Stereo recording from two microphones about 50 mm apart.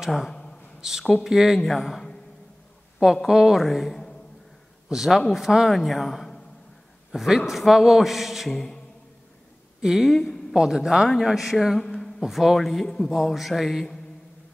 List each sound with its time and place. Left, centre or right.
0.0 s a man's voice: centre
3.3 s a man's voice: centre
4.8 s a man's voice: centre
7.1 s a man's voice: centre
9.8 s speech: centre
10.1 s speech: centre
10.5 s a man's voice: centre
11.8 s a sound: centre
12.2 s a man's voice: centre